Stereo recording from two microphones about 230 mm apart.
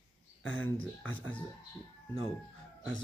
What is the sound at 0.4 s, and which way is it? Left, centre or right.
Speech, left.